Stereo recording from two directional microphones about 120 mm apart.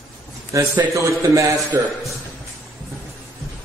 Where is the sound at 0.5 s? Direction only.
30° right (ahead or behind).